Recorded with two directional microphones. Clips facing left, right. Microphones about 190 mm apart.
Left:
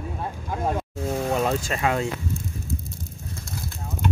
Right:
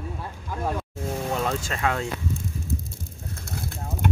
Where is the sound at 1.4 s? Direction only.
10° left (ahead or behind).